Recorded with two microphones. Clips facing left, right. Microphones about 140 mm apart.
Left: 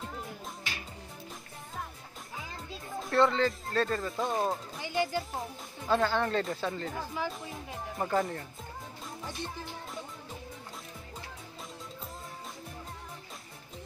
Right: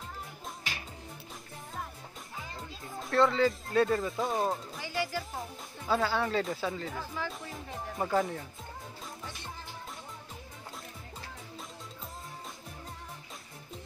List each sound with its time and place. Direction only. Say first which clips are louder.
3.0 s speech: even; centre (ahead or behind)
4.8 s speech: left 4 dB; 20° left (ahead or behind)
5.9 s speech: left 2 dB; 5° right (ahead or behind)